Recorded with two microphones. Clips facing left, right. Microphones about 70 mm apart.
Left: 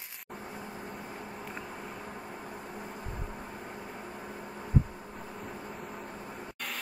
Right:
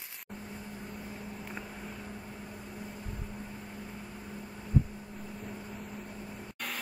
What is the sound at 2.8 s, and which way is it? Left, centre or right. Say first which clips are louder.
Vehicle: left 2 dB; left.